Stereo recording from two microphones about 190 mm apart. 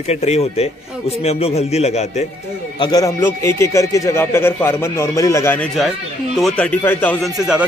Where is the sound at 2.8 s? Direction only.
20° left (ahead or behind).